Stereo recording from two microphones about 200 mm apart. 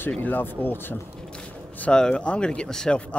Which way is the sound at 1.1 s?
5° left (ahead or behind).